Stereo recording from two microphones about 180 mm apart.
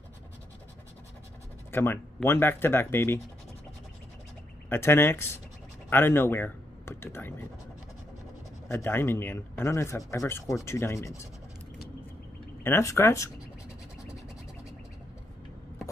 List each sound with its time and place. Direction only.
1.7 s speech: 10° left (ahead or behind)
4.6 s speech: 15° left (ahead or behind)
8.6 s speech: 15° left (ahead or behind)
12.6 s speech: 15° left (ahead or behind)